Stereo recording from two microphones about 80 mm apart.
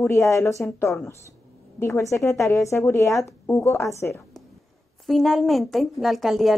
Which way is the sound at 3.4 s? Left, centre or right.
Left.